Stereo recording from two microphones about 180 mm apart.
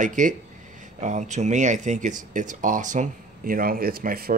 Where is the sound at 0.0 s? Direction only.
45° right (ahead or behind).